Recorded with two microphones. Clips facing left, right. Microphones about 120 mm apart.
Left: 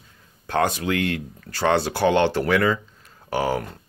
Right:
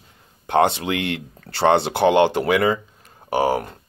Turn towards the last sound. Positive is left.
turn(degrees=-15)  # may be behind; listen again after turning